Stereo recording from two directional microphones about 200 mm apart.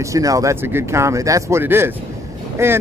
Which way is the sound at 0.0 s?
15° right (ahead or behind).